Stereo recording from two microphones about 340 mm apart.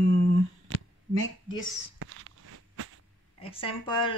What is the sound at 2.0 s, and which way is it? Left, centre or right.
Walk, right.